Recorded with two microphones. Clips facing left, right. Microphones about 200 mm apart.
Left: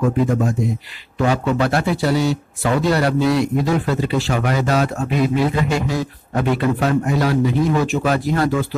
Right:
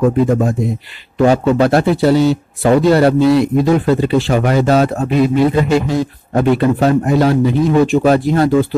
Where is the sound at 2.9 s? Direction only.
25° right (ahead or behind).